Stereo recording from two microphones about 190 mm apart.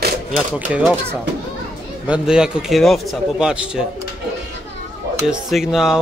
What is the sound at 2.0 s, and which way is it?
A man's voice, 5° right (ahead or behind).